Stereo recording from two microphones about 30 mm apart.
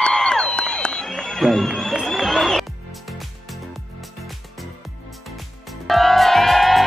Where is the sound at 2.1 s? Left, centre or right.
Centre.